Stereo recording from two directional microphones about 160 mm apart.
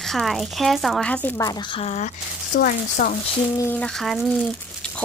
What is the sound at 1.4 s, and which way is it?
Speech, 25° left (ahead or behind).